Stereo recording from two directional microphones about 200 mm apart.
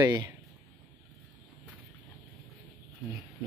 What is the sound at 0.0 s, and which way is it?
Speech, 20° right (ahead or behind).